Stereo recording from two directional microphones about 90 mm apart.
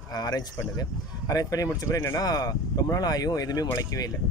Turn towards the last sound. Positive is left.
turn(degrees=40)  # may be behind; listen again after turning